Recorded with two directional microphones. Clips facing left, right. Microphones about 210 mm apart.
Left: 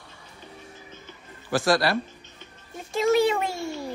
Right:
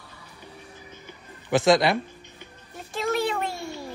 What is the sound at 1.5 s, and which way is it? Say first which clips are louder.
Speech: right 3 dB; 20° right (ahead or behind).